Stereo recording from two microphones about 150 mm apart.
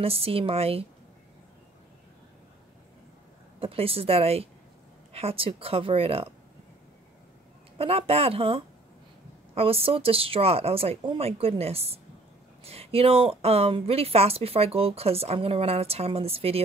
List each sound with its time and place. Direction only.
0.0 s speech: 40° right (ahead or behind)
3.5 s speech: 40° right (ahead or behind)
7.7 s speech: 40° right (ahead or behind)